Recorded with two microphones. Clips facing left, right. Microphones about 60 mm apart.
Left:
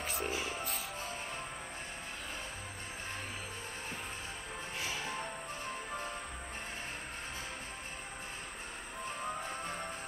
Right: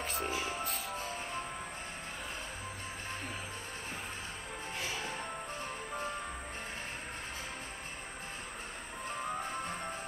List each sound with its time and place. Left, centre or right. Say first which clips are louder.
0.0 s music: right 1 dB; centre